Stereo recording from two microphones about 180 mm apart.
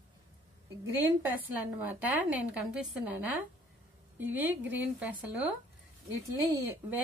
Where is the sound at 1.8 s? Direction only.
10° right (ahead or behind).